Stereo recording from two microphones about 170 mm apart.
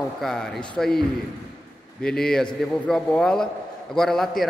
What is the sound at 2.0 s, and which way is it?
A woman's voice, 5° left (ahead or behind).